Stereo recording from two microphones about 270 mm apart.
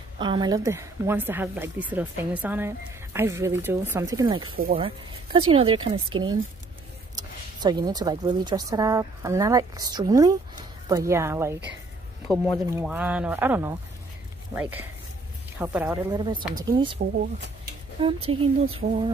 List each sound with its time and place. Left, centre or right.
0.2 s a woman's voice: centre
12.6 s a woman's voice: centre
18.0 s speech: right